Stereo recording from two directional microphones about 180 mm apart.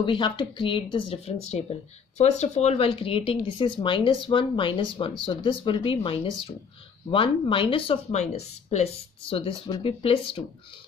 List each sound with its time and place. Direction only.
0.0 s speech: 25° left (ahead or behind)